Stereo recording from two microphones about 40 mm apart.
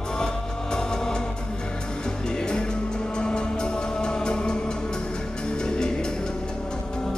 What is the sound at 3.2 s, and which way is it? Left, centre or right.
Music, left.